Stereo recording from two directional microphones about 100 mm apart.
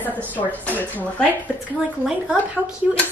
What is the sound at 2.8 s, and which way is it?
Speech, 15° right (ahead or behind).